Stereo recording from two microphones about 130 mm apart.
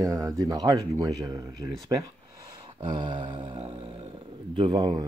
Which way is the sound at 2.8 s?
40° right (ahead or behind).